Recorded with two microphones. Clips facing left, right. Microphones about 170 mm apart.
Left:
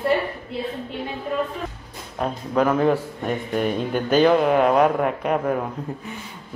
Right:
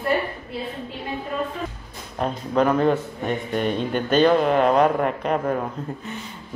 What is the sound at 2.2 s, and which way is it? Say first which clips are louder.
Speech: even; 5° left (ahead or behind).